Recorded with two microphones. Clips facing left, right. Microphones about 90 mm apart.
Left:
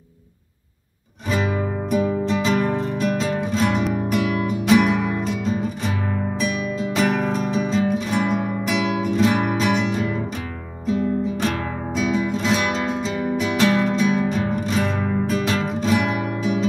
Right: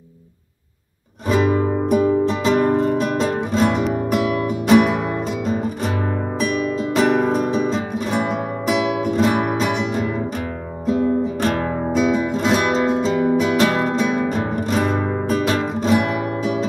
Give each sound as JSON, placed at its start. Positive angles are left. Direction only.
{"t": 1.3, "sound": "music", "side_deg": -45}
{"t": 7.0, "sound": "music", "side_deg": -45}